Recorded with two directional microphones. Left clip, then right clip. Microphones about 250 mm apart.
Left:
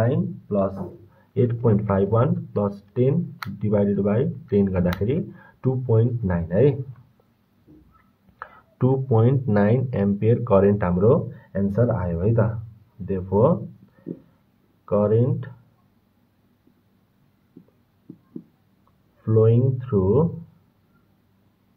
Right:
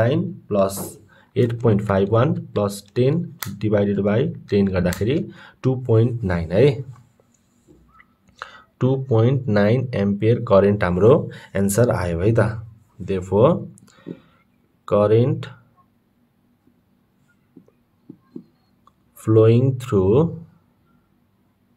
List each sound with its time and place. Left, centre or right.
0.0 s speech: right
8.4 s speech: centre
11.0 s speech: right
14.9 s speech: right
19.2 s speech: right